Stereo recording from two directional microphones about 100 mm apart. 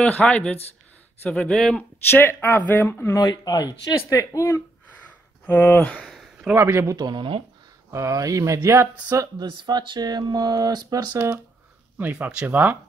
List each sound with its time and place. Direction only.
0.0 s speech: 10° left (ahead or behind)
2.0 s speech: 20° left (ahead or behind)
3.2 s speech: 40° left (ahead or behind)
5.4 s speech: 20° left (ahead or behind)
6.0 s a sound: 5° right (ahead or behind)
6.5 s a man's voice: 25° right (ahead or behind)
7.0 s speech: 50° right (ahead or behind)
7.9 s speech: 30° right (ahead or behind)
9.5 s speech: 50° right (ahead or behind)
12.0 s speech: 15° right (ahead or behind)